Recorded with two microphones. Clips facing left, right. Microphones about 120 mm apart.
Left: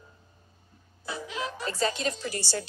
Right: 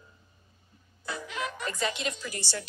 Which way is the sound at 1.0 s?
25° left (ahead or behind).